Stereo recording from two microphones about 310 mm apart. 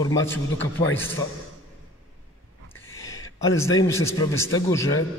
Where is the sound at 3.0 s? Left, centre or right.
Centre.